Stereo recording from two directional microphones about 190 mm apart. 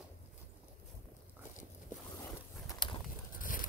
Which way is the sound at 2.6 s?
20° left (ahead or behind).